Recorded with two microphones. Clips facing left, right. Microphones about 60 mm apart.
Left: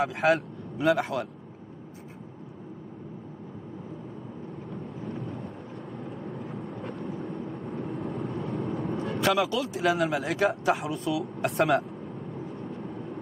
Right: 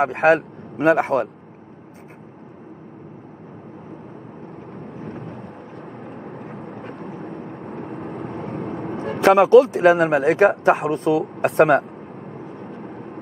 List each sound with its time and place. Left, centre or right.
0.0 s speech: right
4.9 s thunder: right
6.0 s vehicle: right
9.3 s a man's voice: right